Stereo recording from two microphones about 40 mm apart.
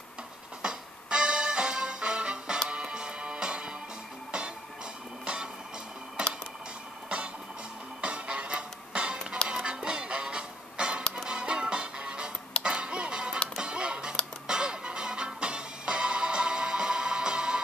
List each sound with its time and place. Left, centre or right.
0.6 s music: right
5.2 s music: right
8.0 s music: right